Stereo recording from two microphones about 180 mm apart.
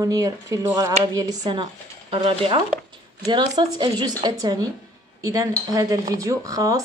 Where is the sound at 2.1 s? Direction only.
30° right (ahead or behind).